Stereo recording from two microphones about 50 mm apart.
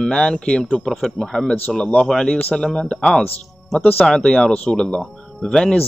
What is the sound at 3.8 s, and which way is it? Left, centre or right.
Speech, left.